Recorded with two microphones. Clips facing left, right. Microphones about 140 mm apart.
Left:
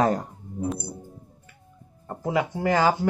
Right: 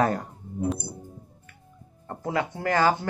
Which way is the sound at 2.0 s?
10° left (ahead or behind).